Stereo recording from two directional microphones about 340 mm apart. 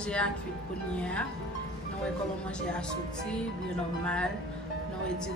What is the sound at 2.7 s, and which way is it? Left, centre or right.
Speech, centre.